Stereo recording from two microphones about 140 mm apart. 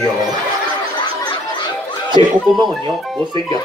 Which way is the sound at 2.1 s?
35° right (ahead or behind).